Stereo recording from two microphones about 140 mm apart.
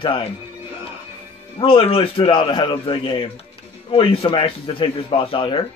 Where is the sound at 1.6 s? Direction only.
40° left (ahead or behind).